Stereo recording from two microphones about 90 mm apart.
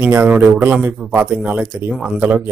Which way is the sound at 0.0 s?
25° right (ahead or behind).